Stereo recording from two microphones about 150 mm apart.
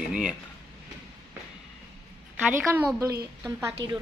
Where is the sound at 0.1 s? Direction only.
5° right (ahead or behind).